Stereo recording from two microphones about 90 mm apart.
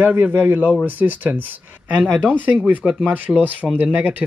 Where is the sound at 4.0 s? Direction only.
20° right (ahead or behind).